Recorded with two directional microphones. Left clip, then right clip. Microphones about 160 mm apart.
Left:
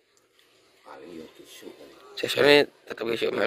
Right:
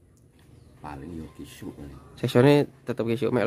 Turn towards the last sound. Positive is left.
turn(degrees=-10)  # may be behind; listen again after turning